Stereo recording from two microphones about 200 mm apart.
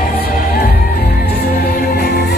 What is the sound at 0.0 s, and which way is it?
Music, 45° left (ahead or behind).